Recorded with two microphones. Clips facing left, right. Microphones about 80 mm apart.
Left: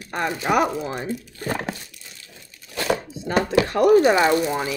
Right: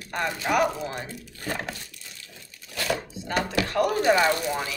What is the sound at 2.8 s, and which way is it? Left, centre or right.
Speech, left.